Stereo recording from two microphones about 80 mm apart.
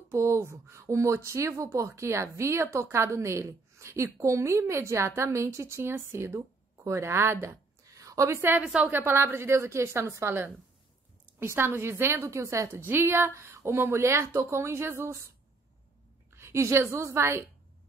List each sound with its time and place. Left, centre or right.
0.1 s a woman's voice: right
7.8 s a sound: right
8.4 s a woman's voice: right
8.6 s a woman's voice: centre
9.0 s a woman's voice: right
16.3 s a woman's voice: right